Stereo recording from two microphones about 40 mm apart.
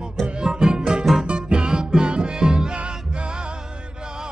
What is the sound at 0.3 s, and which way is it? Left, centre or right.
Music, centre.